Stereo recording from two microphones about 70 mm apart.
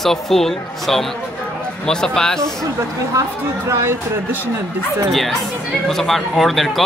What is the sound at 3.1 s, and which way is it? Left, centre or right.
Speech, right.